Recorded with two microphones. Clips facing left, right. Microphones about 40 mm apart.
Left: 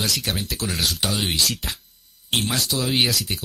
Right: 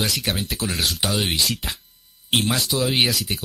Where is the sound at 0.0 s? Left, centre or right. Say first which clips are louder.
Right 1 dB; centre.